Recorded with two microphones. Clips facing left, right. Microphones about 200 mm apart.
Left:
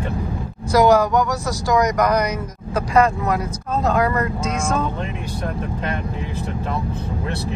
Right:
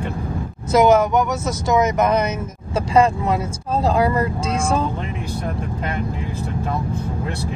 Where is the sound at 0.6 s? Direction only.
20° right (ahead or behind).